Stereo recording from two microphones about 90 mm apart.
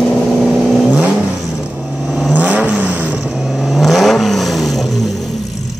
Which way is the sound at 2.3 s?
15° right (ahead or behind).